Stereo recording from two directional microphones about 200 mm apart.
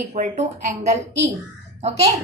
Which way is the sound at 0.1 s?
35° right (ahead or behind).